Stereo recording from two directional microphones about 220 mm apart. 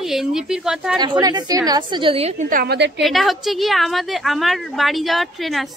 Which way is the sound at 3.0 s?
Centre (ahead or behind).